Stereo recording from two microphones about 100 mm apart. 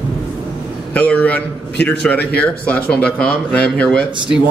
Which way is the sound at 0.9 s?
15° left (ahead or behind).